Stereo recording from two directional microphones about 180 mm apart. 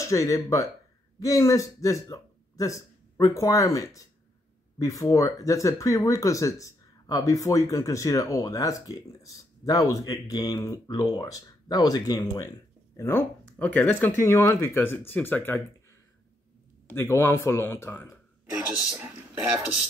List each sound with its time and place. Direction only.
0.0 s speech: 20° left (ahead or behind)
16.8 s speech: 15° left (ahead or behind)
18.7 s speech: 5° right (ahead or behind)